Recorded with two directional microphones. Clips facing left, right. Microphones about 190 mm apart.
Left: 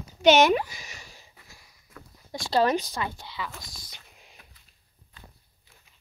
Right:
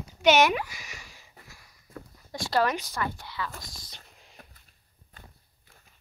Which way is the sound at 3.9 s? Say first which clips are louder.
Even; 15° left (ahead or behind).